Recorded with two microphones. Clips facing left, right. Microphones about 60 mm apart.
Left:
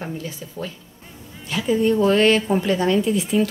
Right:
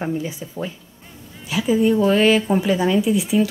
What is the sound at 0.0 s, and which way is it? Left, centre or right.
Speech, centre.